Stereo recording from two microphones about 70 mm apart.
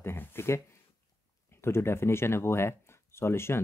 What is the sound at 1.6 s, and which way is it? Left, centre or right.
Speech, left.